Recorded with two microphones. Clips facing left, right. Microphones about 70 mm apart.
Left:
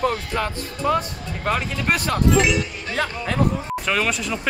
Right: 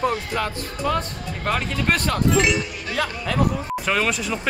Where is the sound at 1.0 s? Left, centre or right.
Centre.